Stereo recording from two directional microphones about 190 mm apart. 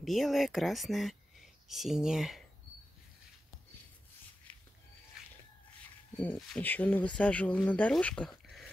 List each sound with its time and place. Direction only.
0.0 s speech: centre (ahead or behind)
5.2 s a sound: 5° right (ahead or behind)
6.1 s speech: 5° left (ahead or behind)